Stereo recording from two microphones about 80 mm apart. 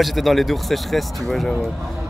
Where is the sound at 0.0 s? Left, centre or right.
Centre.